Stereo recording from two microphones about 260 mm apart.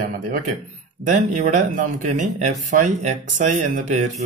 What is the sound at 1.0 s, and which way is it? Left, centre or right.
Speech, right.